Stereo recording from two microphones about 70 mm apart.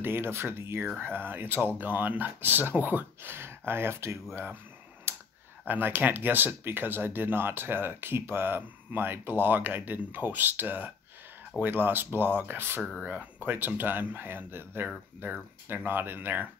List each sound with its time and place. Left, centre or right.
0.0 s speech: right
5.1 s clicking: right
5.7 s speech: right